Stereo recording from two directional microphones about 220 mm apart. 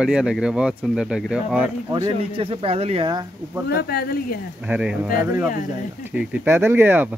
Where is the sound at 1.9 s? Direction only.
20° right (ahead or behind).